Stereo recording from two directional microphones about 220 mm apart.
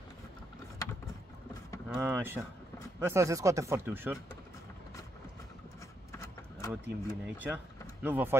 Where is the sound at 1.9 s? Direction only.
10° right (ahead or behind).